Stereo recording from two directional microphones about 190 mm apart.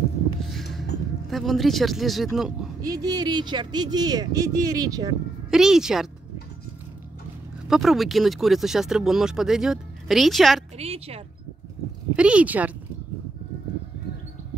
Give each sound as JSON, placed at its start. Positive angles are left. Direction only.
{"t": 1.3, "sound": "speech", "side_deg": 0}
{"t": 2.8, "sound": "speech", "side_deg": -20}
{"t": 5.5, "sound": "speech", "side_deg": -5}
{"t": 7.6, "sound": "speech", "side_deg": 0}
{"t": 10.8, "sound": "a woman's voice", "side_deg": -30}
{"t": 12.2, "sound": "speech", "side_deg": -5}